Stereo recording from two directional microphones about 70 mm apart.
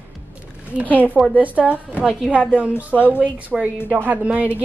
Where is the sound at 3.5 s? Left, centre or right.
Centre.